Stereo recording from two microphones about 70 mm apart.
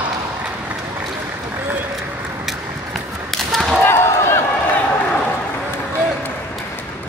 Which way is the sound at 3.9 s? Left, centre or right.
Left.